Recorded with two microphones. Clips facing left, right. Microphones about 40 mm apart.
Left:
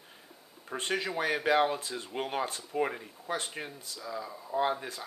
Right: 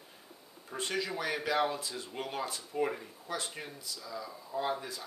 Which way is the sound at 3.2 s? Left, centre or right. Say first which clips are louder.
Left 4 dB; left.